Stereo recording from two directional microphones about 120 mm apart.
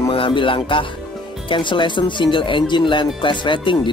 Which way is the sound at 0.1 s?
45° left (ahead or behind).